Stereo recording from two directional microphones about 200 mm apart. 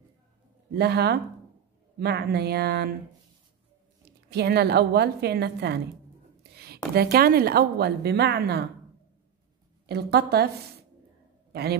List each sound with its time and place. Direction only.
0.7 s a woman's voice: 55° right (ahead or behind)
4.3 s a woman's voice: 55° right (ahead or behind)
9.8 s speech: 55° right (ahead or behind)